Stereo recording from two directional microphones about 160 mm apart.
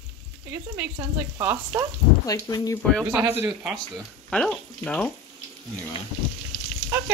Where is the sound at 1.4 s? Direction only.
15° right (ahead or behind).